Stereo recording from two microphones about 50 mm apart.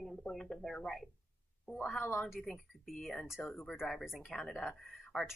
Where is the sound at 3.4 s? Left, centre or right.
Left.